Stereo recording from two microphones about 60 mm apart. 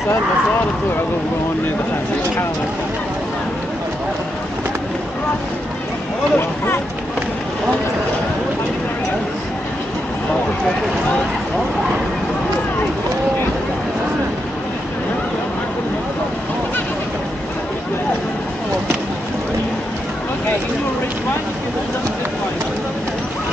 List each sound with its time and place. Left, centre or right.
6.3 s speech: left